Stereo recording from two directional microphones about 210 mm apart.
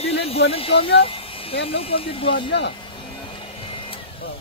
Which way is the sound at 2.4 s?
55° left (ahead or behind).